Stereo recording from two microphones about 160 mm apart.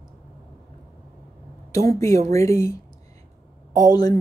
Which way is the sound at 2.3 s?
20° left (ahead or behind).